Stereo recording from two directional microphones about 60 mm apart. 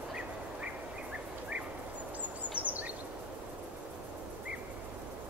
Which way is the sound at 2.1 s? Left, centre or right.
Right.